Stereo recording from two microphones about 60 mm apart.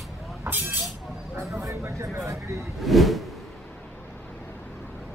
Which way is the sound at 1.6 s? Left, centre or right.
Right.